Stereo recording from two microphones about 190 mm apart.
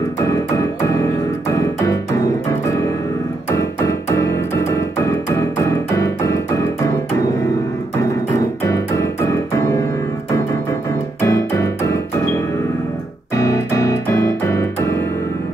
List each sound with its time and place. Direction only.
0.2 s music: 15° left (ahead or behind)
3.5 s music: 15° left (ahead or behind)
8.6 s music: 15° left (ahead or behind)
11.1 s music: 15° left (ahead or behind)
13.4 s piano: 15° left (ahead or behind)